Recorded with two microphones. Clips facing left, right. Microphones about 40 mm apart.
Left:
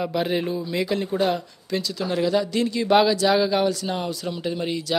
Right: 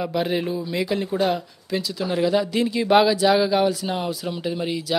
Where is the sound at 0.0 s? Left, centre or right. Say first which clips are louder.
Even; centre.